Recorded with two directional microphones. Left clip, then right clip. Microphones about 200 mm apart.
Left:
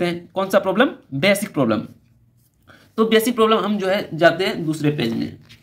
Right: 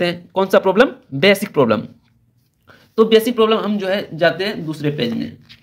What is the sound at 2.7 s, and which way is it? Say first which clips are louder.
Speech: right 5 dB; 15° right (ahead or behind).